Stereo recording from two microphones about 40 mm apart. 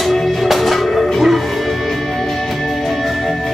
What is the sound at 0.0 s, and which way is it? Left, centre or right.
Music, centre.